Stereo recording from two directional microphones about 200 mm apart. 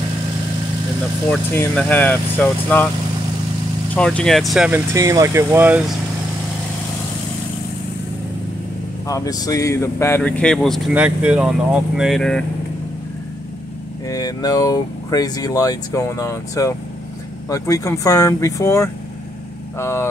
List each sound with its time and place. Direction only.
1.3 s speech: 10° left (ahead or behind)
3.9 s speech: 5° left (ahead or behind)
9.0 s speech: 15° left (ahead or behind)
14.0 s speech: 20° left (ahead or behind)